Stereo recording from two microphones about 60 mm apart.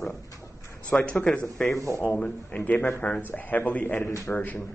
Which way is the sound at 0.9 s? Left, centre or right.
Left.